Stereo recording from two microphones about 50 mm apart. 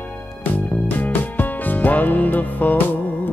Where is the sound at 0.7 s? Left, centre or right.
Left.